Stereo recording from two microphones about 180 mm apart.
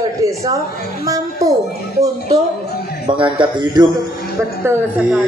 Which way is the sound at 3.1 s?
25° right (ahead or behind).